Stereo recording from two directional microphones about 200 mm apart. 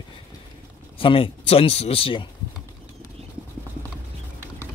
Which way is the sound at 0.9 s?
25° left (ahead or behind).